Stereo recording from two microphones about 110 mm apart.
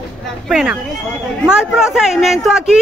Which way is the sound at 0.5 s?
5° right (ahead or behind).